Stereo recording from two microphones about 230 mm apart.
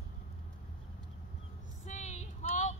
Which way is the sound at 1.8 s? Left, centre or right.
Left.